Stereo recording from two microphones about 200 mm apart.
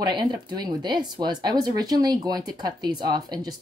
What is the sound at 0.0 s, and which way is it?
Speech, 20° right (ahead or behind).